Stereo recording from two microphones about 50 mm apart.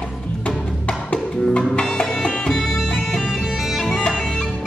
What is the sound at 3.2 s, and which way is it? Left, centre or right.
Bagpipes, centre.